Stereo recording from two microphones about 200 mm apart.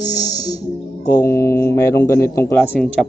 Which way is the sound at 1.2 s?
15° left (ahead or behind).